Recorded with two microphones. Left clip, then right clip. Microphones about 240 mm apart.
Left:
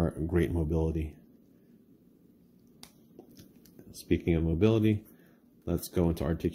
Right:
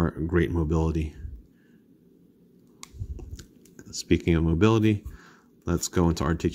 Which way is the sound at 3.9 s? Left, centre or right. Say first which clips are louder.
Right 5 dB; right.